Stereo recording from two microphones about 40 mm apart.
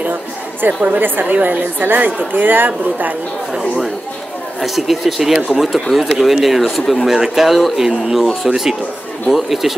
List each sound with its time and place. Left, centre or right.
0.0 s chatter: right
0.8 s a woman's voice: right
4.6 s speech: centre